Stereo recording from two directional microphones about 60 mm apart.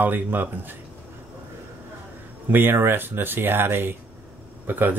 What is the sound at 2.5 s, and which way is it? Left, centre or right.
Speech, right.